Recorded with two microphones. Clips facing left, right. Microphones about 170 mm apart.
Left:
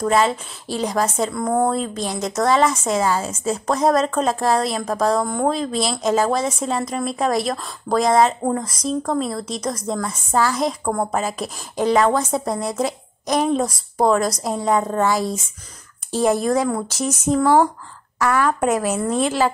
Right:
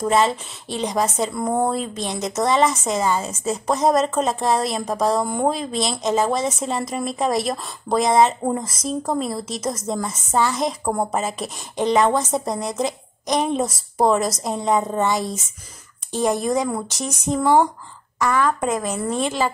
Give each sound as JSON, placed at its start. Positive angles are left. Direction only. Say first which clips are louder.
{"t": 0.1, "sound": "a woman's voice", "louder": "right 1 dB", "side_deg": 0}
{"t": 1.4, "sound": "a woman's voice", "louder": "left 2 dB", "side_deg": -15}
{"t": 1.7, "sound": "a woman's voice", "louder": "left 2 dB", "side_deg": 0}